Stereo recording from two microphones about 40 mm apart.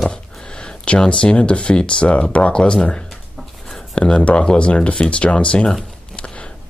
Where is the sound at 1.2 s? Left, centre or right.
Left.